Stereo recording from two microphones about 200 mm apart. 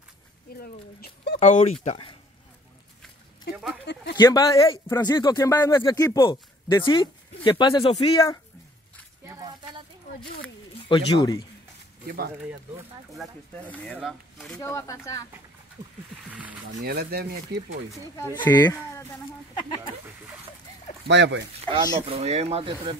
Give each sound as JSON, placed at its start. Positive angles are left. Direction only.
{"t": 0.6, "sound": "speech", "side_deg": 50}
{"t": 1.4, "sound": "speech", "side_deg": 35}
{"t": 3.8, "sound": "a sound", "side_deg": 55}
{"t": 4.2, "sound": "speech", "side_deg": 15}
{"t": 9.2, "sound": "a sound", "side_deg": -20}
{"t": 10.9, "sound": "speech", "side_deg": 20}
{"t": 12.4, "sound": "speech", "side_deg": -5}
{"t": 14.6, "sound": "speech", "side_deg": 15}
{"t": 16.3, "sound": "a sound", "side_deg": -5}
{"t": 16.8, "sound": "speech", "side_deg": -50}
{"t": 18.6, "sound": "speech", "side_deg": 20}
{"t": 21.1, "sound": "speech", "side_deg": -60}
{"t": 21.6, "sound": "speech", "side_deg": -25}